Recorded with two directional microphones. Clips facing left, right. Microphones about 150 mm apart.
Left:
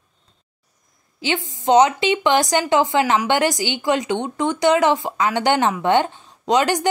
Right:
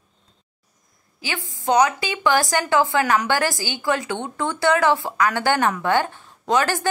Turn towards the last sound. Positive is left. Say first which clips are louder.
# left 3 dB
turn(degrees=20)  # may be behind; listen again after turning